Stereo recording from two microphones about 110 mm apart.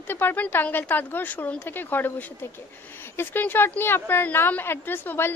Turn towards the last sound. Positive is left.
turn(degrees=20)  # may be behind; listen again after turning